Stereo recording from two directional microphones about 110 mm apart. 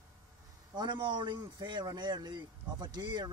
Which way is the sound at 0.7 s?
45° right (ahead or behind).